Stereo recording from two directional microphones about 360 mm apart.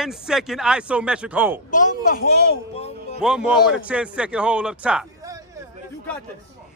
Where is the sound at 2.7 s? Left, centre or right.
Centre.